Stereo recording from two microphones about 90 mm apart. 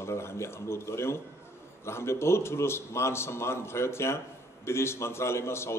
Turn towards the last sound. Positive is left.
turn(degrees=30)  # may be behind; listen again after turning